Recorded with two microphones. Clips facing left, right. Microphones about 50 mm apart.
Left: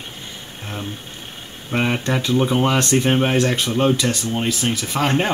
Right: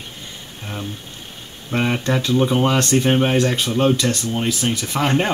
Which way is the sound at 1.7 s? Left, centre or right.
Centre.